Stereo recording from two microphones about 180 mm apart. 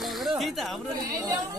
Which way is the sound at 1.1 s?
20° right (ahead or behind).